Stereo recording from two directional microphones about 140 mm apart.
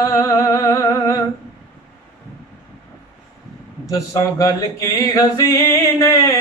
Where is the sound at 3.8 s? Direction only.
20° left (ahead or behind).